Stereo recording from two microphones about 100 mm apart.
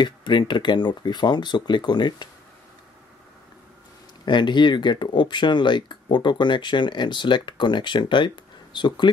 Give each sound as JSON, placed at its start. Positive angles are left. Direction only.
{"t": 0.0, "sound": "speech", "side_deg": 50}
{"t": 4.3, "sound": "speech", "side_deg": 50}